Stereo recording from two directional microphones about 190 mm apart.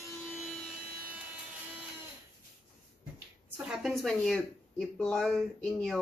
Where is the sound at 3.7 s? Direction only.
Centre (ahead or behind).